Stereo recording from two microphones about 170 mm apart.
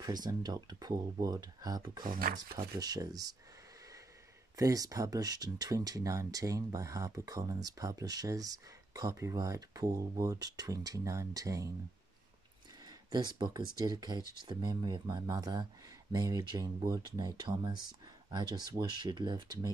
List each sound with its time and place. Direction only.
0.0 s speech: 25° right (ahead or behind)
2.0 s speech: 60° right (ahead or behind)
2.6 s speech: 20° right (ahead or behind)
4.6 s speech: 20° right (ahead or behind)
12.8 s a sound: 25° right (ahead or behind)
13.7 s speech: 25° right (ahead or behind)